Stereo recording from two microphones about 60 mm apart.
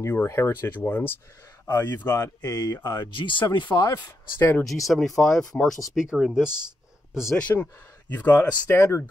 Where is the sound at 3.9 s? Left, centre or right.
Left.